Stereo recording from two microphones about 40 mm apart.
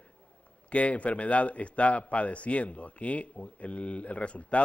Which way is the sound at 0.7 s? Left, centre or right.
Left.